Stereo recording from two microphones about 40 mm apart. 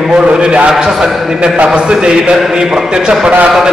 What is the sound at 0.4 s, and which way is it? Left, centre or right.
A man's voice, right.